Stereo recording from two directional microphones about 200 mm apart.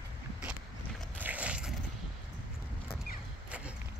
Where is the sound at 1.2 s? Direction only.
5° right (ahead or behind).